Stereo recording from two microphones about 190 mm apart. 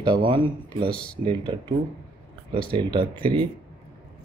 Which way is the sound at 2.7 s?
25° right (ahead or behind).